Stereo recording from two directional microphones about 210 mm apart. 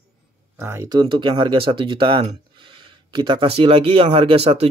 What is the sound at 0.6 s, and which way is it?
Speech, 15° right (ahead or behind).